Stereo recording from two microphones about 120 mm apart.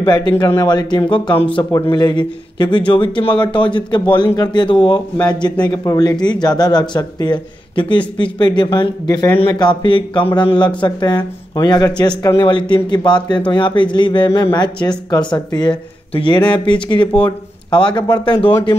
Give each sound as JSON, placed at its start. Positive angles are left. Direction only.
{"t": 0.0, "sound": "speech", "side_deg": 35}